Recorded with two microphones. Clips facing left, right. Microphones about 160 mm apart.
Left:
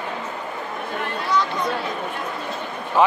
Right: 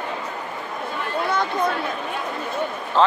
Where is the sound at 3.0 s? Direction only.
10° left (ahead or behind).